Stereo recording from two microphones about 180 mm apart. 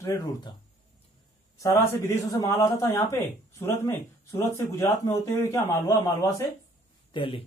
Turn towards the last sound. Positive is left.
turn(degrees=30)  # may be behind; listen again after turning